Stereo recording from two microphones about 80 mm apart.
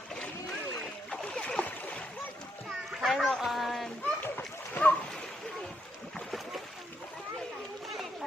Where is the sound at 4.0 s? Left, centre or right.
Centre.